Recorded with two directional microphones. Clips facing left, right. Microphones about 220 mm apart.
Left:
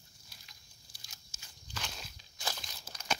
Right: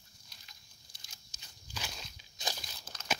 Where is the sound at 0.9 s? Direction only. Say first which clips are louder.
Left 1 dB; 25° right (ahead or behind).